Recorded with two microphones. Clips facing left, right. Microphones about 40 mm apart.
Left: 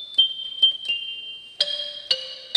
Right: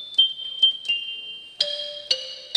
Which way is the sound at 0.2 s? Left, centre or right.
Centre.